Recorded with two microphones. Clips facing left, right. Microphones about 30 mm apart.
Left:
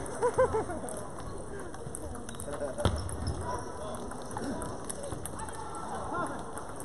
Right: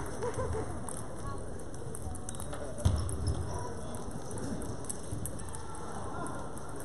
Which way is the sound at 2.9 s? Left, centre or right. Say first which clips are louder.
Left 1 dB; left.